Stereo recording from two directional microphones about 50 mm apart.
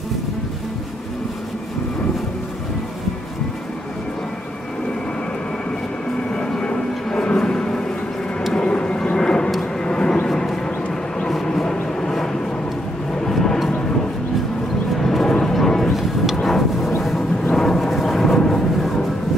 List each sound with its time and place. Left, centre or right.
6.3 s vehicle: centre
15.0 s music: centre
16.4 s vehicle: centre
18.4 s a sound: centre